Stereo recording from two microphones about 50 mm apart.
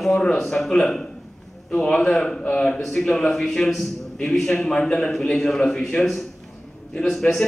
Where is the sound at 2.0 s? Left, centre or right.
Centre.